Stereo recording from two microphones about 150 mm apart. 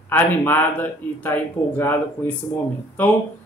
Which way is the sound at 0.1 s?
15° left (ahead or behind).